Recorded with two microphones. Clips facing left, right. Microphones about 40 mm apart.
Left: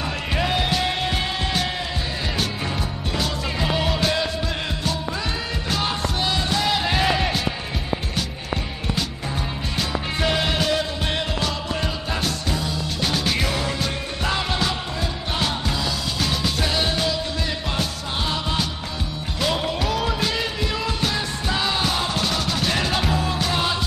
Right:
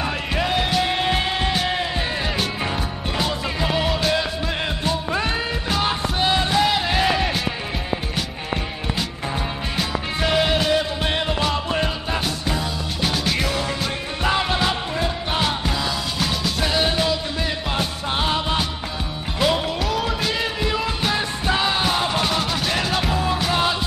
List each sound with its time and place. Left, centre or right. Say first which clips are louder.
0.3 s music: even; centre
0.9 s music: right 3 dB; centre
3.5 s music: even; centre
5.7 s music: right 1 dB; centre
6.6 s music: right 2 dB; centre
9.8 s music: even; centre
11.5 s music: right 4 dB; right
12.1 s music: right 1 dB; centre
13.1 s music: even; centre
14.2 s music: right 3 dB; centre
19.4 s music: right 2 dB; centre
22.6 s music: even; centre